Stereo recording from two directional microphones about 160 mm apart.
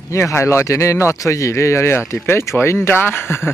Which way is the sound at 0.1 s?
15° left (ahead or behind).